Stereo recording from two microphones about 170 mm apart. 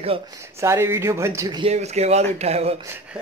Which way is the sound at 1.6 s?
40° right (ahead or behind).